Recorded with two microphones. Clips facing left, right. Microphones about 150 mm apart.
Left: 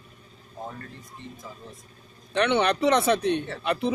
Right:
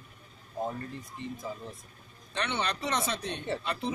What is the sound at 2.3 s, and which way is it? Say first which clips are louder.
Speech: left 10 dB; 65° left (ahead or behind).